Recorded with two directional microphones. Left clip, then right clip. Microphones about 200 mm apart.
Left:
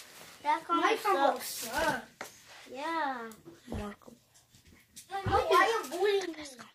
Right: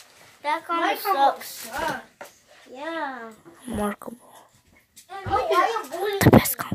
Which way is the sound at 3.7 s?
40° right (ahead or behind).